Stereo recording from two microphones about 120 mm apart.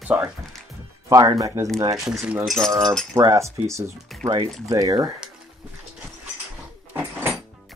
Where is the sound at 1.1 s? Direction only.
30° right (ahead or behind).